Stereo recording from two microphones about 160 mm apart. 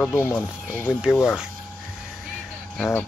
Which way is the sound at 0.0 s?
10° left (ahead or behind).